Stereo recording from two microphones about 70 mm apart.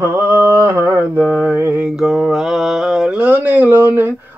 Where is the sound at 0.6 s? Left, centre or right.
Right.